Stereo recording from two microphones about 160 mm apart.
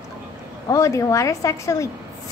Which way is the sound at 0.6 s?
20° left (ahead or behind).